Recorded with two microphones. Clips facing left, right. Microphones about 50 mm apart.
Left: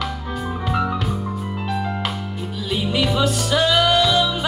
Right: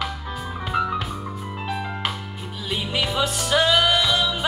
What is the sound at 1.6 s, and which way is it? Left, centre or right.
Music, centre.